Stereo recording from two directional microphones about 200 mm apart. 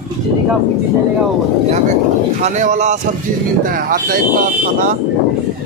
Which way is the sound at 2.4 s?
35° right (ahead or behind).